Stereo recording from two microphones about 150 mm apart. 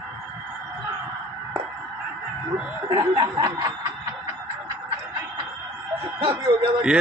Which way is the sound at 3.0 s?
25° right (ahead or behind).